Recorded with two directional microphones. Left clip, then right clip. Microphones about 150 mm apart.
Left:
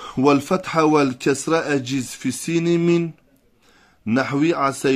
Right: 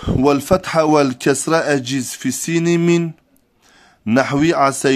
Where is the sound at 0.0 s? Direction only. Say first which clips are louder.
Right 2 dB; 25° right (ahead or behind).